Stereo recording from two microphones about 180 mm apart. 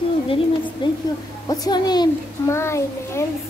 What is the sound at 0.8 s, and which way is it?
A child's voice, 25° left (ahead or behind).